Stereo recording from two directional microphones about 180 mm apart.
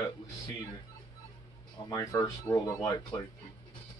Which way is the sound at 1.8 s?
20° left (ahead or behind).